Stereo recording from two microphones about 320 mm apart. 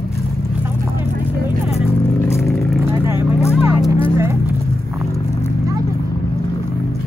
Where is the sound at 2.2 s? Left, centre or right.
Centre.